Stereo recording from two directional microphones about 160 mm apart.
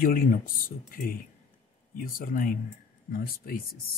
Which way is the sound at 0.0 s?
60° left (ahead or behind).